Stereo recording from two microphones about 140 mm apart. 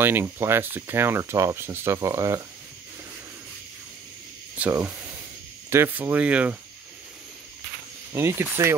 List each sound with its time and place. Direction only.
0.0 s speech: 15° right (ahead or behind)
4.6 s speech: 15° right (ahead or behind)
8.1 s speech: 15° right (ahead or behind)